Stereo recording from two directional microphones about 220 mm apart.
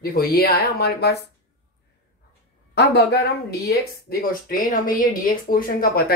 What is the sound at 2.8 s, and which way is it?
Speech, 50° left (ahead or behind).